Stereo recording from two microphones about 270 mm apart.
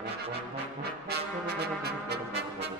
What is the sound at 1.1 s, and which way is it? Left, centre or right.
Brass instrument, right.